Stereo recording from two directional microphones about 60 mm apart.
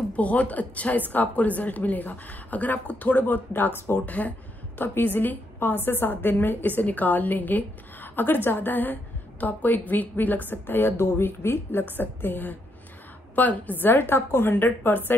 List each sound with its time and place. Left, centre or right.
0.1 s a woman's voice: left